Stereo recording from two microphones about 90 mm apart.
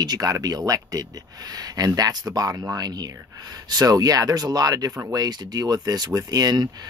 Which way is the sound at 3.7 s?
45° right (ahead or behind).